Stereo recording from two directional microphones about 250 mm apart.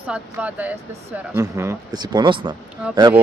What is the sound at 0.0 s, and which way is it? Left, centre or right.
Speech, centre.